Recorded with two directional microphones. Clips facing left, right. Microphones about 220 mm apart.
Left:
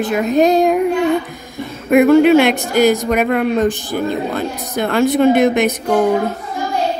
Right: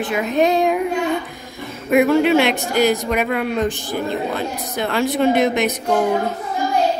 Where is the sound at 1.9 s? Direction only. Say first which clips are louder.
Left 5 dB; 50° left (ahead or behind).